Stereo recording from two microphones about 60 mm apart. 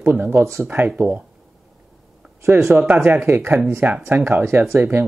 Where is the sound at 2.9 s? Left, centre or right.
Right.